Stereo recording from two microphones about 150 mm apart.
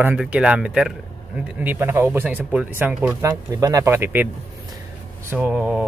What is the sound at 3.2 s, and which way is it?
Speech, 20° right (ahead or behind).